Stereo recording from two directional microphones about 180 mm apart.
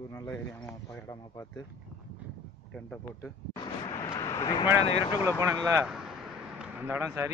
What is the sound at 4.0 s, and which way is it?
Speech, 20° left (ahead or behind).